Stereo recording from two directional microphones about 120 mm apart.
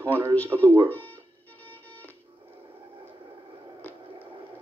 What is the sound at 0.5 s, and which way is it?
Speech, 35° right (ahead or behind).